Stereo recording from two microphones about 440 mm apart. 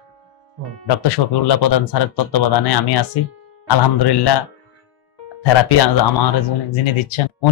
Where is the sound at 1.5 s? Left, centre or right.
Left.